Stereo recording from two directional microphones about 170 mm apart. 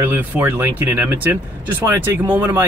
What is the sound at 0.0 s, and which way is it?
Speech, 10° right (ahead or behind).